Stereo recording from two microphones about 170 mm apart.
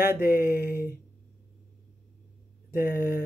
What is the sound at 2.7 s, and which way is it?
Speech, 55° left (ahead or behind).